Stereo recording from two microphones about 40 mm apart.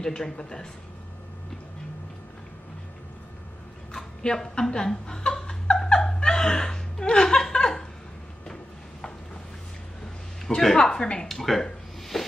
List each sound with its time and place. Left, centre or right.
0.0 s speech: centre
4.2 s chuckle: centre
10.5 s speech: centre
11.2 s a sound: centre